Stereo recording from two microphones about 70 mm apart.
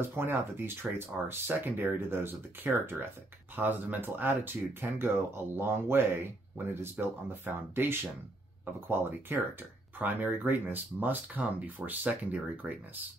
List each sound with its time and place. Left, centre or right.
0.0 s speech: right